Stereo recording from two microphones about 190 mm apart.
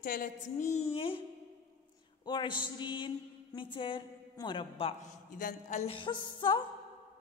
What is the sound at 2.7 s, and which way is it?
A woman's voice, 25° left (ahead or behind).